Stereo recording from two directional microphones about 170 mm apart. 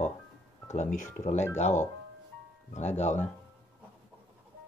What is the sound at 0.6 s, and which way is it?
Speech, 45° left (ahead or behind).